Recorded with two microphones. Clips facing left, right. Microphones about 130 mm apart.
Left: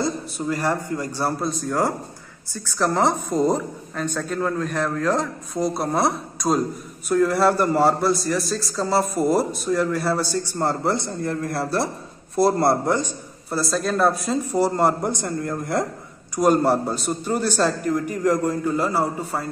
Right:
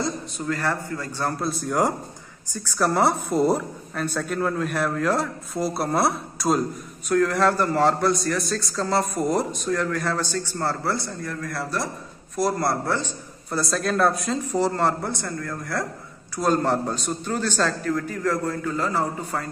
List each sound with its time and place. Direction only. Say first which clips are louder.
0.5 s a man's voice: left 3 dB; 15° left (ahead or behind)
1.4 s a woman's voice: right 2 dB; 5° right (ahead or behind); by 12.9 s 25° left (ahead or behind)
12.9 s a man's voice: left 3 dB; 10° left (ahead or behind)
13.6 s a man's voice: left 1 dB; centre (ahead or behind)